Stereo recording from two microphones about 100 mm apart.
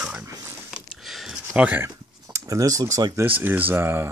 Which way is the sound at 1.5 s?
15° right (ahead or behind).